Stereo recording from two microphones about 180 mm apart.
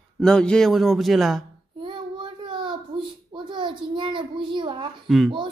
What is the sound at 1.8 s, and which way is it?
Child singing, 25° right (ahead or behind).